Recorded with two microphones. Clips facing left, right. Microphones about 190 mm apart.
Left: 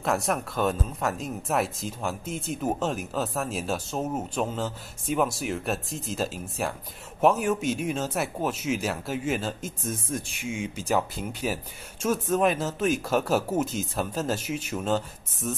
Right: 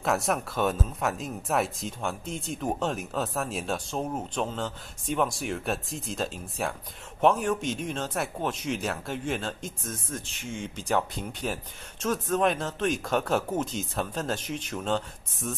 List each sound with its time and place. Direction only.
0.0 s speech: centre (ahead or behind)